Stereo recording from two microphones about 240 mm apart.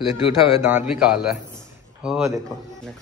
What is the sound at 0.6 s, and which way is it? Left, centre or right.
Speech, centre.